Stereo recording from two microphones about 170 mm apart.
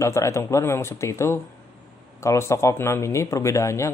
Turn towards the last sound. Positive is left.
turn(degrees=15)  # may be behind; listen again after turning